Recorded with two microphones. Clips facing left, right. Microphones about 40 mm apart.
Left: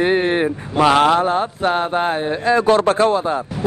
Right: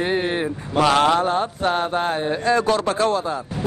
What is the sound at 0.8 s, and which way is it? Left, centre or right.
Speech, centre.